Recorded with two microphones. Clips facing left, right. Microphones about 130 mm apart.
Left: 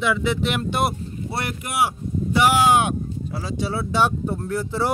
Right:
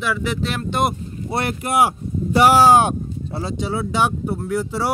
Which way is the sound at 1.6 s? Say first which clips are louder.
Right 5 dB; 40° right (ahead or behind).